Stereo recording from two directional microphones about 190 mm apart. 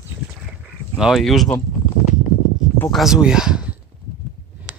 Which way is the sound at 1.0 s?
Centre (ahead or behind).